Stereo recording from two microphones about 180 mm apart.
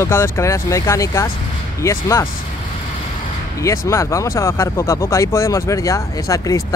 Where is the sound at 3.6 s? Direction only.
15° left (ahead or behind).